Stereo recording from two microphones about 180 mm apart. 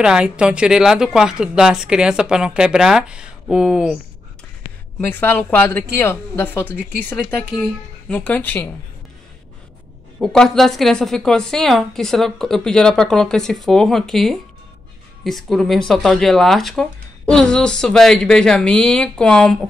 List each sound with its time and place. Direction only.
0.0 s a woman's voice: 5° right (ahead or behind)
5.0 s speech: 10° left (ahead or behind)
10.2 s a woman's voice: 5° left (ahead or behind)